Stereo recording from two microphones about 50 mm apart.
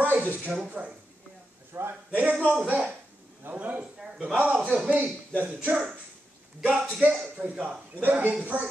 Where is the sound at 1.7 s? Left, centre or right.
Right.